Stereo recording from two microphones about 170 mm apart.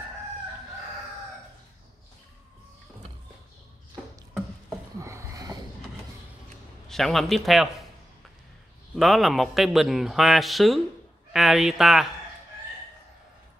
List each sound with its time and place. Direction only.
5.0 s a sound: 15° right (ahead or behind)
6.9 s speech: centre (ahead or behind)
8.9 s speech: centre (ahead or behind)